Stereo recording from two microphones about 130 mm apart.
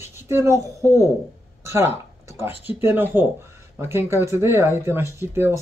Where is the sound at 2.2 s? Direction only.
20° right (ahead or behind).